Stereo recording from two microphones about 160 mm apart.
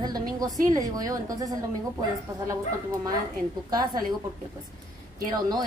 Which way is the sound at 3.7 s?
25° right (ahead or behind).